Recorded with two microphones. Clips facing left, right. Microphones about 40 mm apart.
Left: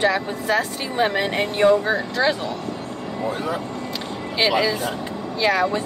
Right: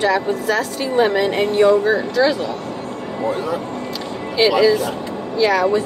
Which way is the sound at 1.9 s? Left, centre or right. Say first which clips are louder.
Right 4 dB; left.